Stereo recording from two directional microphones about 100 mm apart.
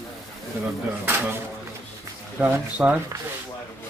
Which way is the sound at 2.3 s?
15° right (ahead or behind).